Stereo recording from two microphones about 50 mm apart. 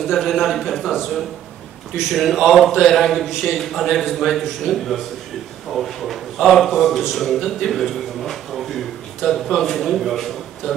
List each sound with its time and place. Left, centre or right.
0.1 s a man's voice: centre
2.1 s a man's voice: centre